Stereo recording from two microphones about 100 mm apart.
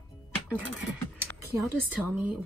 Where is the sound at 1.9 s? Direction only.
15° right (ahead or behind).